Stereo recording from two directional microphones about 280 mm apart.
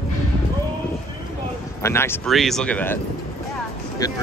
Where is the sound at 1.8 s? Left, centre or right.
Centre.